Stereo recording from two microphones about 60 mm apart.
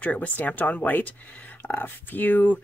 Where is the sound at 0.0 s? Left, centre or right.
Left.